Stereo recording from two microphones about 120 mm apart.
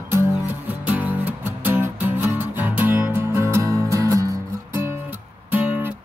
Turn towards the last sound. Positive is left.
turn(degrees=-15)  # may be behind; listen again after turning